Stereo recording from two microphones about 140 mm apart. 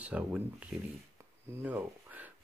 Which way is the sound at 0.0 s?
10° right (ahead or behind).